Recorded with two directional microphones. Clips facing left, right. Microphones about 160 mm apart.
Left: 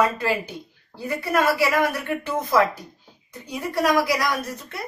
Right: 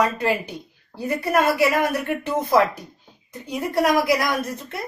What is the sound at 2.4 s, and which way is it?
A woman's voice, 20° right (ahead or behind).